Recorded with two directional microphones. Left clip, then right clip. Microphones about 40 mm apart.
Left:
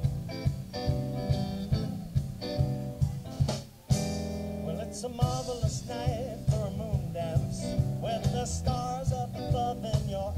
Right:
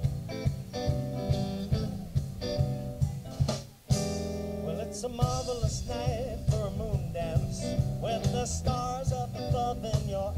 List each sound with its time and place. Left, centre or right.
0.0 s music: right